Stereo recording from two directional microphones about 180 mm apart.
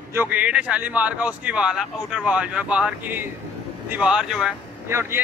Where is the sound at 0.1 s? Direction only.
10° right (ahead or behind).